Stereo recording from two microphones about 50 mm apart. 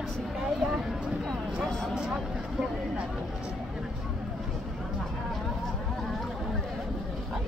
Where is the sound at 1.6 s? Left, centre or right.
Centre.